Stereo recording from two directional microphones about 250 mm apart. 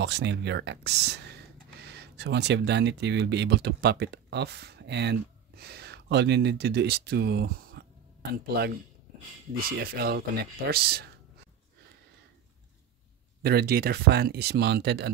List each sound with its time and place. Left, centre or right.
0.0 s speech: right
9.8 s speech: right
13.4 s speech: right